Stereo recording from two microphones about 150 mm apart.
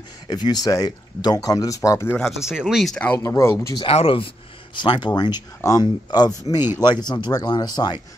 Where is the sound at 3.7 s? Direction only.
40° left (ahead or behind).